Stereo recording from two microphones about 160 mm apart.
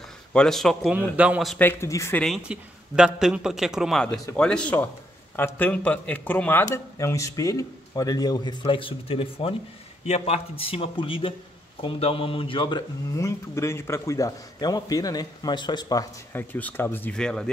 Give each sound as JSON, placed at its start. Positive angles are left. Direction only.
{"t": 0.3, "sound": "speech", "side_deg": 5}
{"t": 0.9, "sound": "a man's voice", "side_deg": -10}
{"t": 1.6, "sound": "speech", "side_deg": 15}
{"t": 2.2, "sound": "a man's voice", "side_deg": -5}
{"t": 13.1, "sound": "speech", "side_deg": 20}
{"t": 16.3, "sound": "speech", "side_deg": 10}